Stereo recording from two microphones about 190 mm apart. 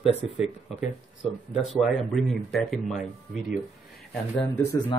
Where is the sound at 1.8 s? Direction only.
Centre (ahead or behind).